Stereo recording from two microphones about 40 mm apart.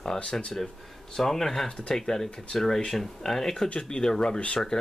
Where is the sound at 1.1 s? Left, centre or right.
Centre.